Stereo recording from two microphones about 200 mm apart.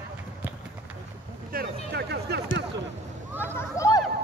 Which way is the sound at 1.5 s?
50° right (ahead or behind).